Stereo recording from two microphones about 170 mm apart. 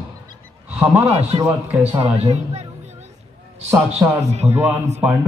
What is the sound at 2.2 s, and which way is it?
Music, 40° right (ahead or behind).